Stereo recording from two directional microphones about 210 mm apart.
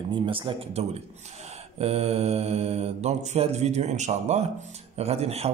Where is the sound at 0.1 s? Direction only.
25° right (ahead or behind).